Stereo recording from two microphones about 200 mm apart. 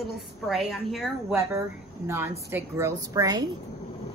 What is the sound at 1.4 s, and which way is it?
A woman's voice, 15° right (ahead or behind).